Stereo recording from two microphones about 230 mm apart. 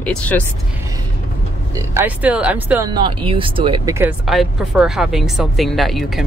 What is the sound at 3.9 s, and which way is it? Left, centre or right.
Speech, centre.